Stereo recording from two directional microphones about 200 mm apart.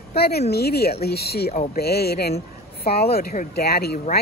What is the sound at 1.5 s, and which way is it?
Speech, 40° left (ahead or behind).